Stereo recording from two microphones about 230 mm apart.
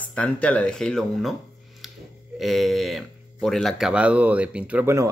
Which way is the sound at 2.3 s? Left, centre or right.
Centre.